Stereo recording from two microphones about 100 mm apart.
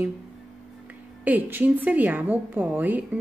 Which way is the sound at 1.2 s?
20° right (ahead or behind).